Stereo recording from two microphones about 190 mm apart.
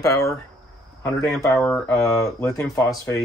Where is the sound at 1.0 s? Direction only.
Centre (ahead or behind).